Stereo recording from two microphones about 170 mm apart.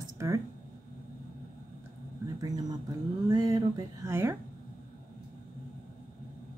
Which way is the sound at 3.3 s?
20° right (ahead or behind).